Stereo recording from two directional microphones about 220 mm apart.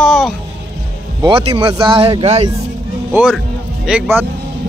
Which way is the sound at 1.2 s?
25° right (ahead or behind).